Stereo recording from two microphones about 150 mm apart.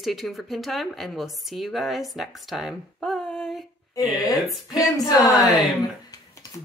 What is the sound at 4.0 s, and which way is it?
Speech, 25° left (ahead or behind).